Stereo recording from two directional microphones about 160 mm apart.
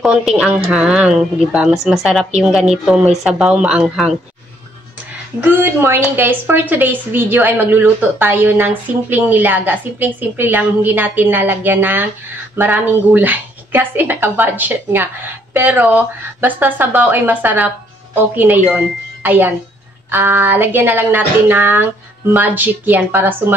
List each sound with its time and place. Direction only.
0.0 s a woman's voice: 5° right (ahead or behind)
5.4 s a woman's voice: 15° right (ahead or behind)